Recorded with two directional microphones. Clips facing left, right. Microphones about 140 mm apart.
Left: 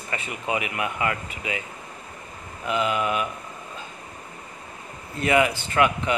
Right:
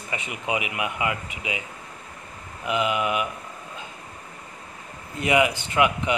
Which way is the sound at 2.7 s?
15° right (ahead or behind).